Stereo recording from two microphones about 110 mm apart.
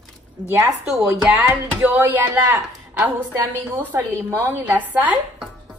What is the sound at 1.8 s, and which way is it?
A woman's voice, 15° right (ahead or behind).